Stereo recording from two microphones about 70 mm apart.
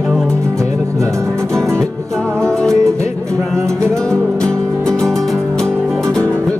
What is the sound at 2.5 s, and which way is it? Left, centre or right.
Music, centre.